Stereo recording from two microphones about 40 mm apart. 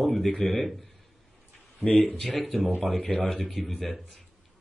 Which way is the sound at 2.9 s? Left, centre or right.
Centre.